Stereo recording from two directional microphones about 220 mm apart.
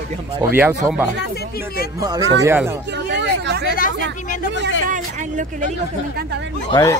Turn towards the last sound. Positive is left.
turn(degrees=15)  # may be behind; listen again after turning